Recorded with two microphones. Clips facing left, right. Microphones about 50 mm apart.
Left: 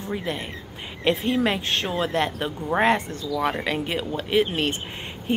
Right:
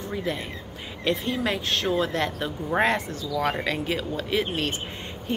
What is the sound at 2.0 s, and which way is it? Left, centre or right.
Speech, centre.